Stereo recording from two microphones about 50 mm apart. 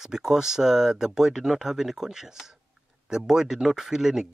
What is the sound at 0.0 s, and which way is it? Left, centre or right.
Speech, centre.